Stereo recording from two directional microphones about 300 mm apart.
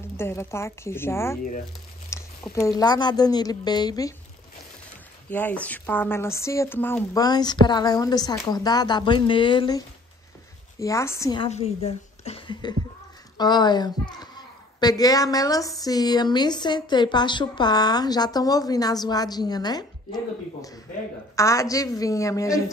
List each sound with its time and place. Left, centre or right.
0.2 s speech: centre
5.3 s a woman's voice: centre
21.4 s speech: centre